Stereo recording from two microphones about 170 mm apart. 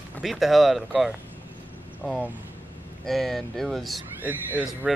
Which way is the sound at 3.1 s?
Centre (ahead or behind).